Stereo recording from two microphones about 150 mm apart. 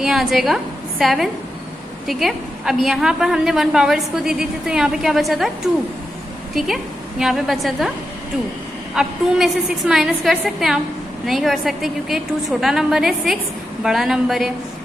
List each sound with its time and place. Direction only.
0.0 s a woman's voice: centre (ahead or behind)
8.9 s a woman's voice: 5° right (ahead or behind)